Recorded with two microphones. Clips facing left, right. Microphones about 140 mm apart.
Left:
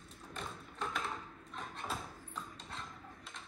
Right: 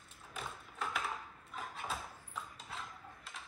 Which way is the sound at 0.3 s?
5° right (ahead or behind).